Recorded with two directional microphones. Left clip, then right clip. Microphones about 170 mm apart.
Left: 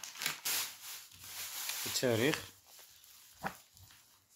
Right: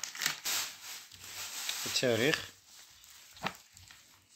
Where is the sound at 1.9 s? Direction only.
15° right (ahead or behind).